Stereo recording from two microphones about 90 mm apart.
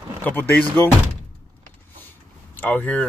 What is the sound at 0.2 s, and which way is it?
Speech, 20° left (ahead or behind).